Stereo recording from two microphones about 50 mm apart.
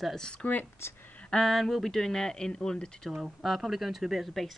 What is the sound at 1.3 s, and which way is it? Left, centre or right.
Speech, centre.